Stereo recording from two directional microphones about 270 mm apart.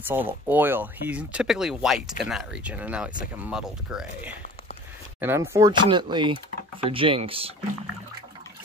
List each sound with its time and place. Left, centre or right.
0.1 s speech: centre